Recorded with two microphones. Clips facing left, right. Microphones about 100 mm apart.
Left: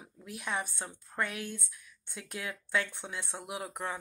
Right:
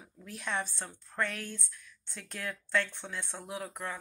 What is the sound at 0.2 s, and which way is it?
Speech, 10° left (ahead or behind).